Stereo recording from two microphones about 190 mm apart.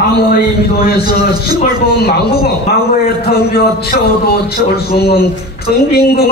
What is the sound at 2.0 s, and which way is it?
A man's voice, 55° left (ahead or behind).